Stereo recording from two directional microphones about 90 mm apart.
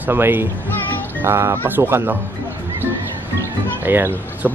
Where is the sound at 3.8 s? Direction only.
20° right (ahead or behind).